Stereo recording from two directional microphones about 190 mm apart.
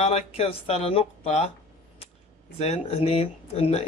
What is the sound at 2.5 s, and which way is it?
Speech, 35° left (ahead or behind).